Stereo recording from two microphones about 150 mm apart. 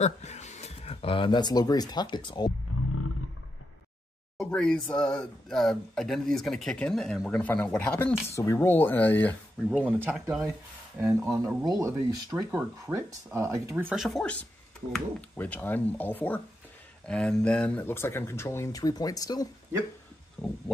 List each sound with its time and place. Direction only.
0.0 s speech: 50° left (ahead or behind); by 2.5 s 30° left (ahead or behind)
4.4 s speech: 5° left (ahead or behind)
9.8 s speech: 10° right (ahead or behind)
11.3 s speech: 20° right (ahead or behind)
13.9 s speech: centre (ahead or behind); by 19.4 s 25° left (ahead or behind)
20.4 s speech: 5° left (ahead or behind)